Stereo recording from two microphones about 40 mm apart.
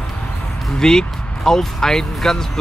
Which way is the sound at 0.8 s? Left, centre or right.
Centre.